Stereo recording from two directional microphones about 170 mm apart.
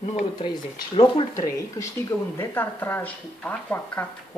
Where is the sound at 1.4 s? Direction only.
20° left (ahead or behind).